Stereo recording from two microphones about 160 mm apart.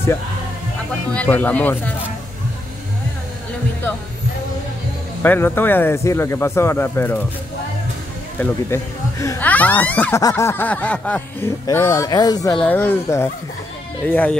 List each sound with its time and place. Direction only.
1.1 s speech: 10° left (ahead or behind)
5.2 s speech: 15° left (ahead or behind)
8.4 s speech: 15° left (ahead or behind)
12.5 s speech: 10° left (ahead or behind)